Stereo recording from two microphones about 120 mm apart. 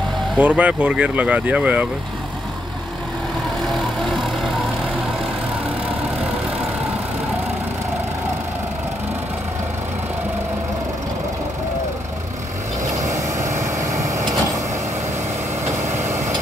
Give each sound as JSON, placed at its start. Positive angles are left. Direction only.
{"t": 0.4, "sound": "speech", "side_deg": -10}
{"t": 12.9, "sound": "vehicle", "side_deg": -25}